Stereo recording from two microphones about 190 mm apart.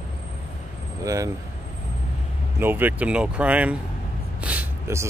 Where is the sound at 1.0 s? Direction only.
15° right (ahead or behind).